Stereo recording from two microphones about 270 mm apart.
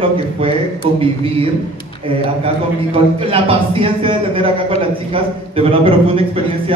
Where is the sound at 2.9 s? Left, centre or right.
Centre.